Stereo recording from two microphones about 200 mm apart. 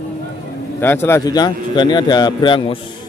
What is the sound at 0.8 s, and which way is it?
Speech, 10° left (ahead or behind).